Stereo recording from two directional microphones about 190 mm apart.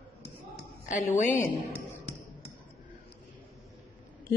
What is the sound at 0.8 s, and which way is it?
Speech, 40° left (ahead or behind).